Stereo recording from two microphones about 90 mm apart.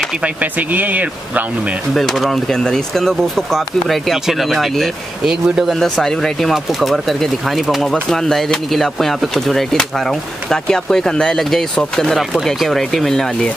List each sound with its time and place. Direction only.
0.2 s speech: 15° right (ahead or behind)
2.0 s speech: centre (ahead or behind)